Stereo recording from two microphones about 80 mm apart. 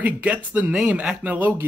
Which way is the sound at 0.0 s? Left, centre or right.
Centre.